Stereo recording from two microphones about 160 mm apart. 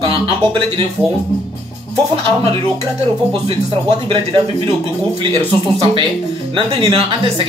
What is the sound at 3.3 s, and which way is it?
Speech, 35° right (ahead or behind).